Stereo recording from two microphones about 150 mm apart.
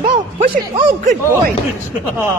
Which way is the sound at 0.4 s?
60° right (ahead or behind).